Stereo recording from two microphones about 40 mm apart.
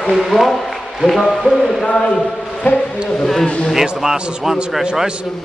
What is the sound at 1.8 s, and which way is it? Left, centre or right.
Speech, centre.